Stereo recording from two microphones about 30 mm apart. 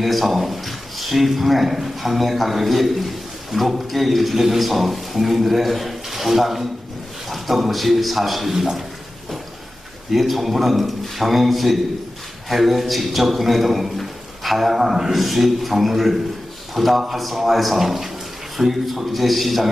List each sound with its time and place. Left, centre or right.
0.0 s a man's voice: centre
10.1 s a man's voice: centre
13.9 s a sound: centre
15.1 s a man's voice: centre